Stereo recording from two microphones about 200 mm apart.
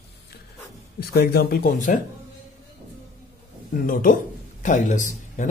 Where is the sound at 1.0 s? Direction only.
50° left (ahead or behind).